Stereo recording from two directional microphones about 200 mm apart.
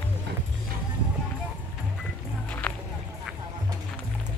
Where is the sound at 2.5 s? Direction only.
10° left (ahead or behind).